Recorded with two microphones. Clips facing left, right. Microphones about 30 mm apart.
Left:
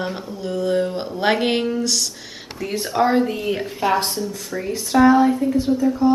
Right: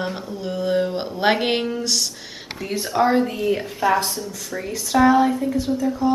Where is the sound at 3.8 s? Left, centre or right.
Centre.